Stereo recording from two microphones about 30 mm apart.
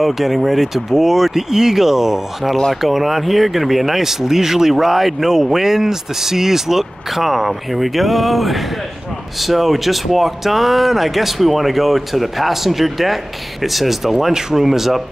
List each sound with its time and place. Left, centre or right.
0.0 s speech: centre